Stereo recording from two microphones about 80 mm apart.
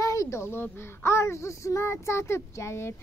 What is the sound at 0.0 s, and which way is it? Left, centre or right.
A child's voice, left.